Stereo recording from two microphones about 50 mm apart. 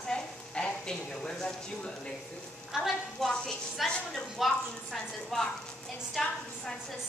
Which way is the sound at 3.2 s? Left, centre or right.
Centre.